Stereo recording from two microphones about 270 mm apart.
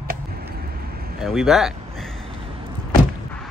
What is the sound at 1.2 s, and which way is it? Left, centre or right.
Speech, centre.